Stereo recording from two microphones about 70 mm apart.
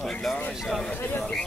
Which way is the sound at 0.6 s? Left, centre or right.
Centre.